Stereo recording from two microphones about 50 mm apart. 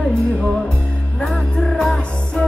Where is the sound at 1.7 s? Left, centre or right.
Centre.